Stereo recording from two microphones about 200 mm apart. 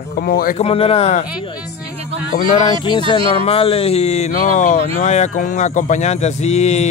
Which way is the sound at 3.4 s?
30° left (ahead or behind).